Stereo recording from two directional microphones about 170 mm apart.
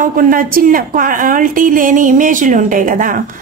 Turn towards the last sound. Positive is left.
turn(degrees=-55)  # may be behind; listen again after turning